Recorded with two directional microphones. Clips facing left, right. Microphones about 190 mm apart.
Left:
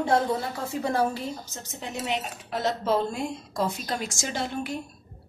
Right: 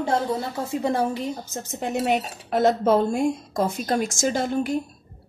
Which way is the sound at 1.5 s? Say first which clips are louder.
Right 9 dB; 50° right (ahead or behind).